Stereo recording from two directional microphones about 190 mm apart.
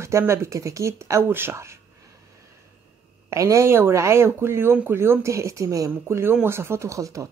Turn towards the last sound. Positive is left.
turn(degrees=-15)  # may be behind; listen again after turning